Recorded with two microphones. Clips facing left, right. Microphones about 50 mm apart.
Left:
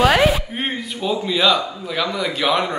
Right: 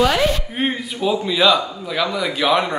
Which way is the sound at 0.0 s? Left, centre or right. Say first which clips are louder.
Left 2 dB; left.